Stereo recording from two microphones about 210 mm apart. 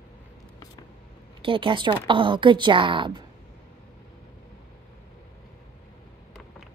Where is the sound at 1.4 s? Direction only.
25° right (ahead or behind).